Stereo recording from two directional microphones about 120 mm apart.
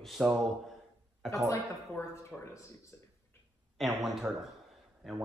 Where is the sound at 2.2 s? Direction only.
25° left (ahead or behind).